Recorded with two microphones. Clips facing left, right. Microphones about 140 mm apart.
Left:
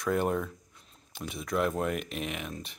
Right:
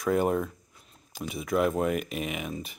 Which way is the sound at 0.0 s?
Centre (ahead or behind).